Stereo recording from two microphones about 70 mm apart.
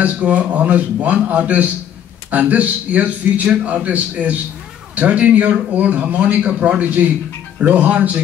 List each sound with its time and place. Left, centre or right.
0.0 s speech: right